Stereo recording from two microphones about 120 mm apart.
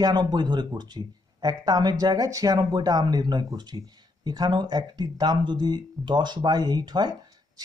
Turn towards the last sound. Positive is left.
turn(degrees=-35)  # may be behind; listen again after turning